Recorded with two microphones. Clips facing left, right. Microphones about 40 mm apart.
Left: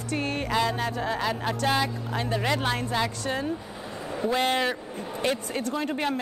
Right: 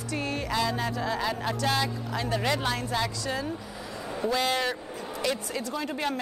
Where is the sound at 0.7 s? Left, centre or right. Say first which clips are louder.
Left 1 dB; left.